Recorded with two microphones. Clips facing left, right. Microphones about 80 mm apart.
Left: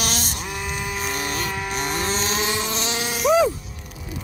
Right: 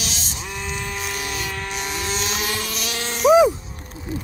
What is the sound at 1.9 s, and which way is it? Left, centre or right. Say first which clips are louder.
Vehicle: left 2 dB; left.